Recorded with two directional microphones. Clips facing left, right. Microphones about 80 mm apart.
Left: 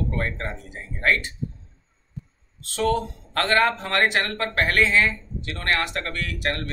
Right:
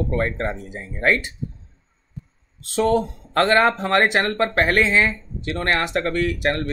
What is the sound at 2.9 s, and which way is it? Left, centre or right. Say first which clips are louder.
Speech: right 6 dB; right.